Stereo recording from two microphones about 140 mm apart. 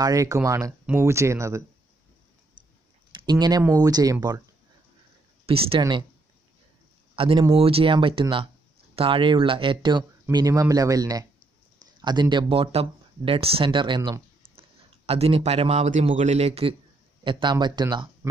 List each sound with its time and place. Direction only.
0.0 s speech: 25° right (ahead or behind)
3.3 s speech: 30° right (ahead or behind)
5.8 s speech: 30° right (ahead or behind)
7.2 s a man's voice: 40° right (ahead or behind)
17.2 s speech: 35° right (ahead or behind)